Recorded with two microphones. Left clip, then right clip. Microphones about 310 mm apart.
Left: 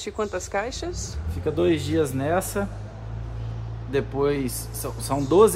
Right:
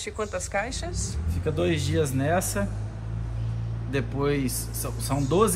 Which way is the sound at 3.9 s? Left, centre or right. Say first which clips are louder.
Left 4 dB; left.